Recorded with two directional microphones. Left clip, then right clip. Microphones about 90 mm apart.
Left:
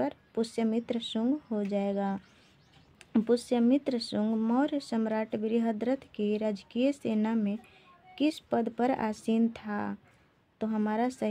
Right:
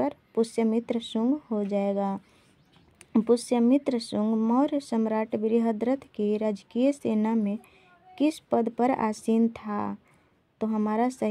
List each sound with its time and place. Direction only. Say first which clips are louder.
0.0 s speech: right 5 dB; 35° right (ahead or behind)